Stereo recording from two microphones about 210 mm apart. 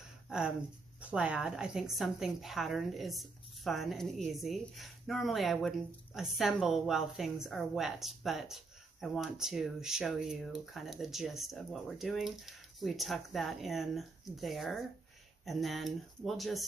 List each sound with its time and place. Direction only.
0.3 s a woman's voice: 5° right (ahead or behind)